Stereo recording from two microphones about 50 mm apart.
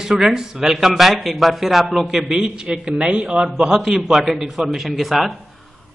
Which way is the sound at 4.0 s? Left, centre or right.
Centre.